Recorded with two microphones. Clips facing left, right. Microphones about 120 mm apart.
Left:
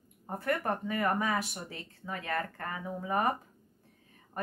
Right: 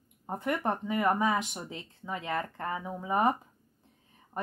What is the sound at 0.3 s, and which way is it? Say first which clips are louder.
Speech: right 1 dB; 20° right (ahead or behind).